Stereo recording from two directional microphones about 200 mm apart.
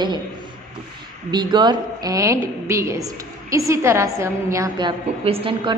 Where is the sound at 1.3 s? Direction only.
20° right (ahead or behind).